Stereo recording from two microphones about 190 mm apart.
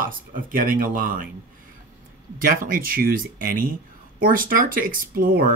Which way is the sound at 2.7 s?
50° right (ahead or behind).